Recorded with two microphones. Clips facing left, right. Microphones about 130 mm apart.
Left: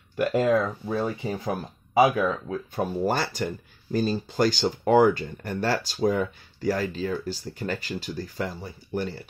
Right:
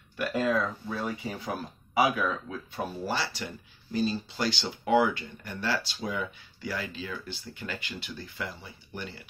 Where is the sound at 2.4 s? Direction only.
45° left (ahead or behind).